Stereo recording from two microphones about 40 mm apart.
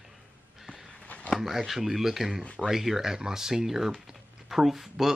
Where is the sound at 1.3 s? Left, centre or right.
Centre.